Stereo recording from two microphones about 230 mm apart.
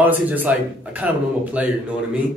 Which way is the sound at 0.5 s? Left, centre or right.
Centre.